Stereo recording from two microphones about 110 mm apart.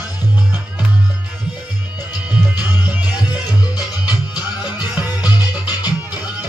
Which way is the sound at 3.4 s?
35° left (ahead or behind).